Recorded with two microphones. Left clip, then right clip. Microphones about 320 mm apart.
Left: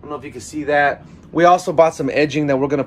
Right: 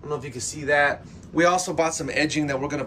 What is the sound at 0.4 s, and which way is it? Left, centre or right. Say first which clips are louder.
Speech: left 5 dB; centre.